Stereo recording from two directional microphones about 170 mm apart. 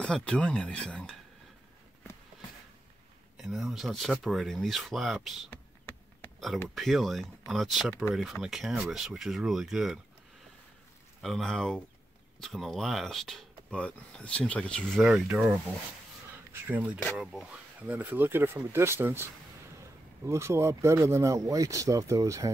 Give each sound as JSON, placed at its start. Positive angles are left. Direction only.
{"t": 0.0, "sound": "speech", "side_deg": 5}
{"t": 3.3, "sound": "speech", "side_deg": 0}
{"t": 5.5, "sound": "a sound", "side_deg": 10}
{"t": 6.7, "sound": "speech", "side_deg": 0}
{"t": 11.2, "sound": "speech", "side_deg": 0}
{"t": 16.6, "sound": "speech", "side_deg": -10}